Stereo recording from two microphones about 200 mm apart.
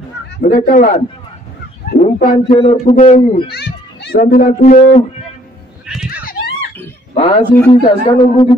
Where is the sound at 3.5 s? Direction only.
55° left (ahead or behind).